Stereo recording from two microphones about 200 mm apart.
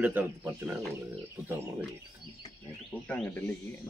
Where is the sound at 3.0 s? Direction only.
5° left (ahead or behind).